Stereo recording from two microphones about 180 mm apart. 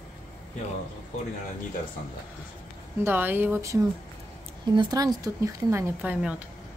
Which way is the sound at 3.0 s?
10° right (ahead or behind).